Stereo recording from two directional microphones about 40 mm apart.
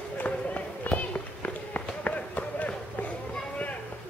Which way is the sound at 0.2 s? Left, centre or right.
Left.